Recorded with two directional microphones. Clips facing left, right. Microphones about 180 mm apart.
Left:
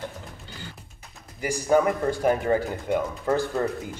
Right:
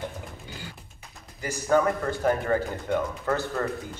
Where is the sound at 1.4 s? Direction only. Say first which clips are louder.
Left 2 dB; 15° left (ahead or behind).